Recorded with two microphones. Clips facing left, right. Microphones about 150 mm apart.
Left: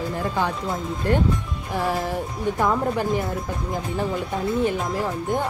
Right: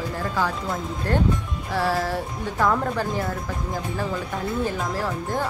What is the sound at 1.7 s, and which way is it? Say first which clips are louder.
Speech: right 1 dB; 15° left (ahead or behind).